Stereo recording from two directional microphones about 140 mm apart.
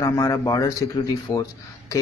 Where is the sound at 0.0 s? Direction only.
25° left (ahead or behind).